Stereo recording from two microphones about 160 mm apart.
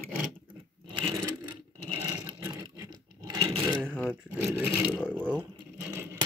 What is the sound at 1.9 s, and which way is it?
Sewing machine, 30° right (ahead or behind).